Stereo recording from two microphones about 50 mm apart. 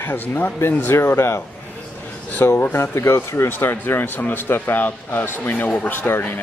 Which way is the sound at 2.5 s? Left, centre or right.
Left.